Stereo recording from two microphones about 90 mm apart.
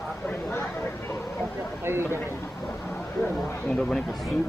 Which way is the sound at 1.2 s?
5° right (ahead or behind).